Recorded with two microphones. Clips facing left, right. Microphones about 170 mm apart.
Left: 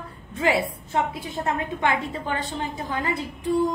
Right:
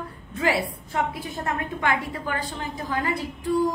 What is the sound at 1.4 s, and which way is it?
A woman's voice, 25° left (ahead or behind).